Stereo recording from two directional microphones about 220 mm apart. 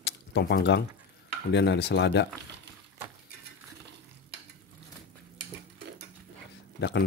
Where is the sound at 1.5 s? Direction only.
50° left (ahead or behind).